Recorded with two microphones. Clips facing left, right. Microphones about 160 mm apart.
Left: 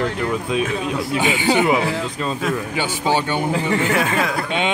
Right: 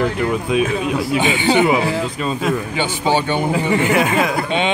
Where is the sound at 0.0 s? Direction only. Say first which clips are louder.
Right 3 dB; 10° right (ahead or behind).